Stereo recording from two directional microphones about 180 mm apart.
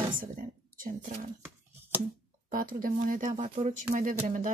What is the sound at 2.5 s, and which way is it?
Speech, 50° right (ahead or behind).